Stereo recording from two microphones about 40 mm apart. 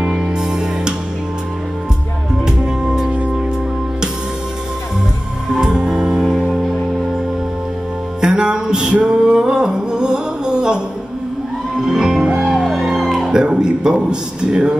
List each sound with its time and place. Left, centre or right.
0.0 s music: centre
2.4 s music: right
5.5 s music: centre
8.2 s music: centre
11.8 s music: centre
13.3 s speech: centre